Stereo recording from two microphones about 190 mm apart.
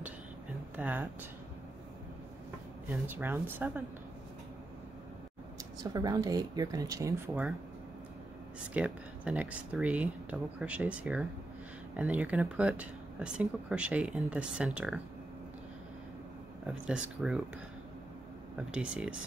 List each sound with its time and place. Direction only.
0.7 s speech: 10° right (ahead or behind)
2.9 s speech: 10° right (ahead or behind)
5.9 s speech: 20° right (ahead or behind)
8.7 s speech: 5° right (ahead or behind)
16.6 s speech: 5° right (ahead or behind)
18.7 s speech: 5° right (ahead or behind)